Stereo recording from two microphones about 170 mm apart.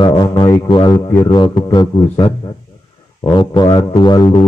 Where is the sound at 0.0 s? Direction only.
30° left (ahead or behind).